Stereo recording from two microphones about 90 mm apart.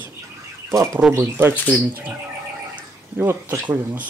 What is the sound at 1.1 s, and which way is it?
Speech, 25° right (ahead or behind).